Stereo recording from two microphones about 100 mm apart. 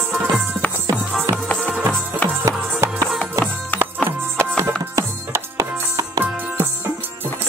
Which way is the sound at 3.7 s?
15° left (ahead or behind).